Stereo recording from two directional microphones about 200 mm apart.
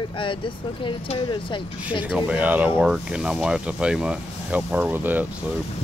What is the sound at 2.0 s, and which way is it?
Speech, 5° right (ahead or behind).